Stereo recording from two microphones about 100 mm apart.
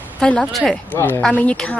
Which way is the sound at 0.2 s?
5° left (ahead or behind).